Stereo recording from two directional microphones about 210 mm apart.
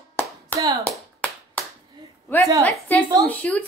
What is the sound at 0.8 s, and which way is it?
Clapping, 5° left (ahead or behind).